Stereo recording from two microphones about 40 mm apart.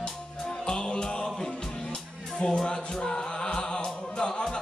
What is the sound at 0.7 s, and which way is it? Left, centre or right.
Music, left.